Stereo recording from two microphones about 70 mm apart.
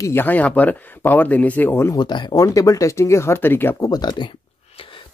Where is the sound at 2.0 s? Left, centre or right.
Left.